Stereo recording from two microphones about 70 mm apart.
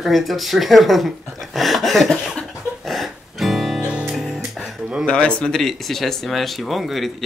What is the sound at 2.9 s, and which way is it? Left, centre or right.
Music, centre.